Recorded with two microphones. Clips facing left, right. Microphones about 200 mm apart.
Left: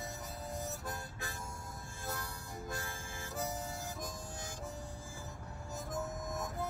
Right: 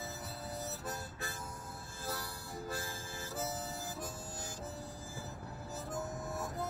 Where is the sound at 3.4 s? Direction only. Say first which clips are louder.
Left 1 dB; 15° left (ahead or behind).